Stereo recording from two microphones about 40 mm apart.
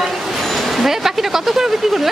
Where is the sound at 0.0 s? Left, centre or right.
Centre.